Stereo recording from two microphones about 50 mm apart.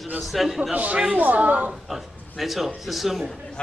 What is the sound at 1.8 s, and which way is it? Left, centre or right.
A man's voice, centre.